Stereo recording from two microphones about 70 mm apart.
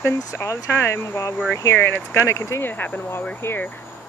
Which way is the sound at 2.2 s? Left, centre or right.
Left.